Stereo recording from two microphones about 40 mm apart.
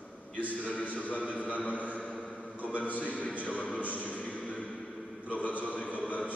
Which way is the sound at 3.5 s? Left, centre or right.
Left.